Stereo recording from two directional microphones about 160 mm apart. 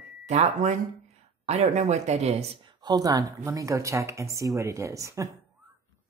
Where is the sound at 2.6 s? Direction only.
25° right (ahead or behind).